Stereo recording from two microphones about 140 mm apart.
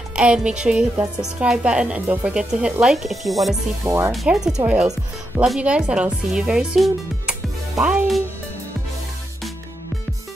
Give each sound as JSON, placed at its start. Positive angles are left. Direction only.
{"t": 0.1, "sound": "speech", "side_deg": -5}
{"t": 3.8, "sound": "speech", "side_deg": -20}
{"t": 4.1, "sound": "speech", "side_deg": 0}